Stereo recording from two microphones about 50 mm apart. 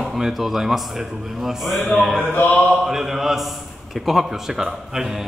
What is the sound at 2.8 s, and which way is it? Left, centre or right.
A man's voice, centre.